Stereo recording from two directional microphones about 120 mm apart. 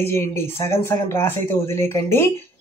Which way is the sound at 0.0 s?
20° left (ahead or behind).